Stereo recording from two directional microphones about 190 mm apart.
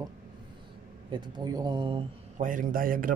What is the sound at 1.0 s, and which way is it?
Speech, 25° right (ahead or behind).